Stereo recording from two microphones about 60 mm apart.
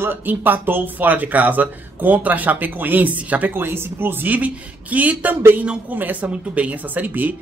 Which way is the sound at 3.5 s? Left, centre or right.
Right.